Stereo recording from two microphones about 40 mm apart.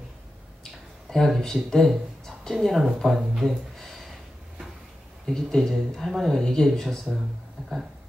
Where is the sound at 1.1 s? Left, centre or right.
Centre.